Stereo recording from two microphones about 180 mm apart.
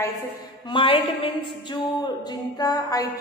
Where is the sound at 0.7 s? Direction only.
30° left (ahead or behind).